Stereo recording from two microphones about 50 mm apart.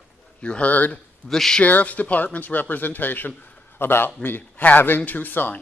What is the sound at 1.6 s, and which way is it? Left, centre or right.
Speech, left.